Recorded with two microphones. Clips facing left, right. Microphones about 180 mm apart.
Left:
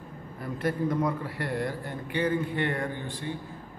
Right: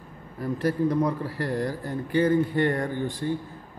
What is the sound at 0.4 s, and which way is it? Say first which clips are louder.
A man's voice: right 4 dB; 40° right (ahead or behind).